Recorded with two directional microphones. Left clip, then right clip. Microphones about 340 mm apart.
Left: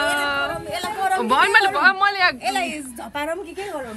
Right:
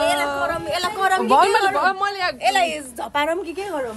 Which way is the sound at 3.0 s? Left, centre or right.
Centre.